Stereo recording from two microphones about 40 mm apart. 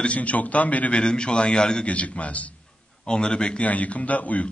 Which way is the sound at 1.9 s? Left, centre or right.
Left.